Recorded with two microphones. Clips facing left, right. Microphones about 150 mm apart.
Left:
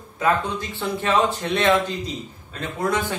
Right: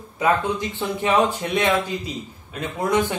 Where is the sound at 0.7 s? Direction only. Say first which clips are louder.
Even; 15° right (ahead or behind).